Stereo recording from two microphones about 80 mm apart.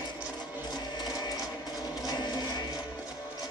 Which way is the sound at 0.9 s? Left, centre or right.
Left.